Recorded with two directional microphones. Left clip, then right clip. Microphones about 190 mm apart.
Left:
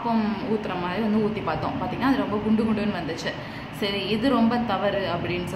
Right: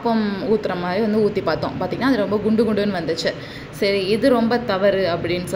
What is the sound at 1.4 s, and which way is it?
A woman's voice, 30° right (ahead or behind).